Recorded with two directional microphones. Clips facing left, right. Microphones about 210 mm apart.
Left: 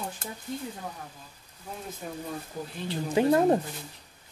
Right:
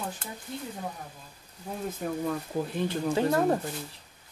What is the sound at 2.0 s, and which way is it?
Speech, 50° right (ahead or behind).